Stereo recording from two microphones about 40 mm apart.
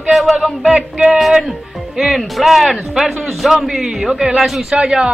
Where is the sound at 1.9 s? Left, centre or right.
Centre.